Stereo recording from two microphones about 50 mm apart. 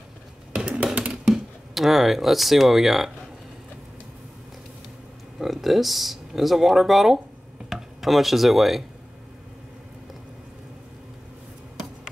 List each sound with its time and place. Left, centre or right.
0.5 s a sound: centre
1.2 s speech: centre
5.4 s speech: centre